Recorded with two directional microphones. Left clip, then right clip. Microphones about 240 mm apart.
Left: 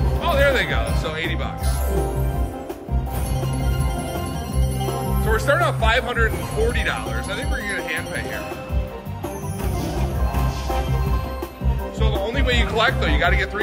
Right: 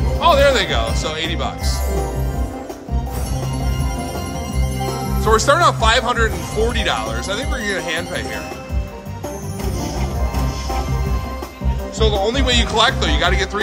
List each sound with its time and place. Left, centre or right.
0.2 s speech: centre
5.2 s speech: centre
12.0 s speech: right